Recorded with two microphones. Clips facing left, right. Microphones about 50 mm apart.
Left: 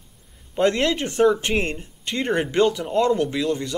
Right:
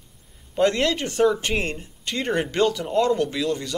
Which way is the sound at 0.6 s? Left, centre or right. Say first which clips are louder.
Left 1 dB; left.